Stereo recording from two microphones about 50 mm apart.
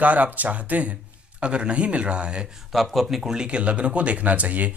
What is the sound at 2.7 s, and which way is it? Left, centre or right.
Speech, centre.